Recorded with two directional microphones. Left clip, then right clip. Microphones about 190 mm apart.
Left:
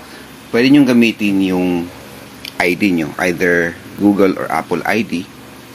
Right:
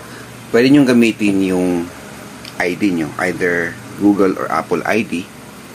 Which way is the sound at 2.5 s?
40° left (ahead or behind).